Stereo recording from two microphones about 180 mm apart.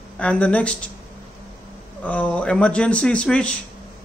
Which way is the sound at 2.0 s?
10° left (ahead or behind).